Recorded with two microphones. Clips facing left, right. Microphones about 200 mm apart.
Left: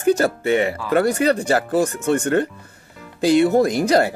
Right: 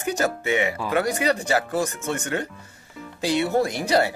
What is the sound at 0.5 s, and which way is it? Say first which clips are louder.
Speech: left 5 dB; 45° left (ahead or behind).